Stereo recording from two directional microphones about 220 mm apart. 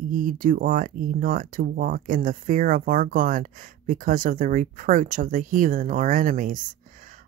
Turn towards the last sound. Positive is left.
turn(degrees=-35)  # may be behind; listen again after turning